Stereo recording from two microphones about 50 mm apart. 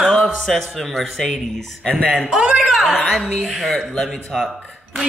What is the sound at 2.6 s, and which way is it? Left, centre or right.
Speech, centre.